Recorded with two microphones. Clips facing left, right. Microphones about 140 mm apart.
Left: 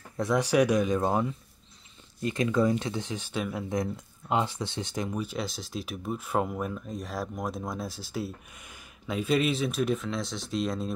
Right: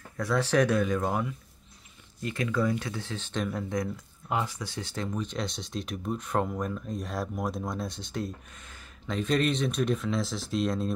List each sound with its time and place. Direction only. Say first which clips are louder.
0.2 s speech: left 1 dB; 15° left (ahead or behind)
3.7 s speech: left 1 dB; 25° left (ahead or behind); by 10.9 s centre (ahead or behind)